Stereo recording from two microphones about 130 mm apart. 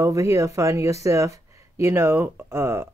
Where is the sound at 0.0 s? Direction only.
25° right (ahead or behind).